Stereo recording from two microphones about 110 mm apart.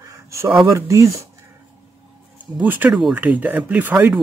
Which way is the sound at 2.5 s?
15° right (ahead or behind).